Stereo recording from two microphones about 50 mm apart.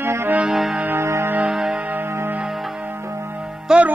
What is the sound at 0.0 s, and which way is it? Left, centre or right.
Music, right.